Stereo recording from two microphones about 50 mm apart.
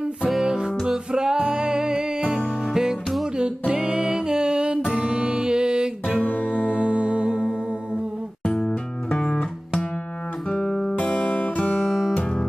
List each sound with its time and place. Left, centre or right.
0.3 s music: centre
8.5 s music: centre
11.0 s music: left